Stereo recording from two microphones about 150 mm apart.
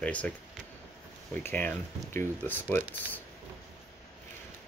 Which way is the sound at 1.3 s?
10° left (ahead or behind).